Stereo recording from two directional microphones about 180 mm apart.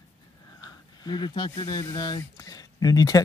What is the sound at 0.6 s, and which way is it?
Speech, 25° left (ahead or behind).